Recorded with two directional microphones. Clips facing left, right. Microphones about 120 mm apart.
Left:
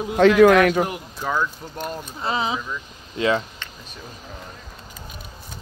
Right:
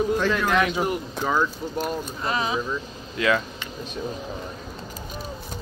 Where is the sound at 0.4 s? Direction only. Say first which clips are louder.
Left 9 dB; 60° left (ahead or behind).